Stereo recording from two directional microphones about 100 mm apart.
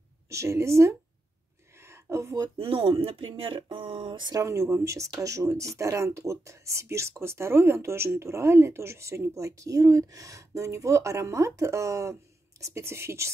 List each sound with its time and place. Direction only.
0.3 s speech: 30° right (ahead or behind)
1.9 s a sound: 25° right (ahead or behind)
2.5 s speech: 65° right (ahead or behind)
4.4 s speech: 30° right (ahead or behind)